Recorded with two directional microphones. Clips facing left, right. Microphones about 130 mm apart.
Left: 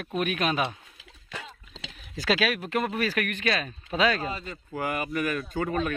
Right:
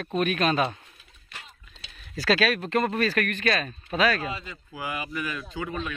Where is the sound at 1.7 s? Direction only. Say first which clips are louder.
Left 10 dB; 90° left.